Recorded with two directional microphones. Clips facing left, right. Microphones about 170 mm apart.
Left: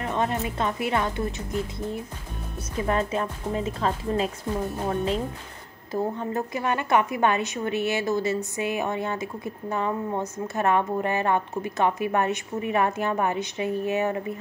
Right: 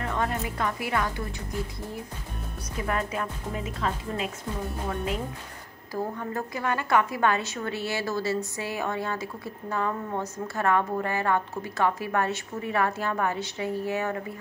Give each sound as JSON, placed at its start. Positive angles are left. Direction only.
{"t": 0.0, "sound": "a woman's voice", "side_deg": 20}